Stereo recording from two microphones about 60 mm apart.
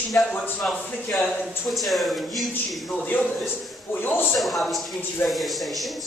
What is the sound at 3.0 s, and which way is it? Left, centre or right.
A man's voice, left.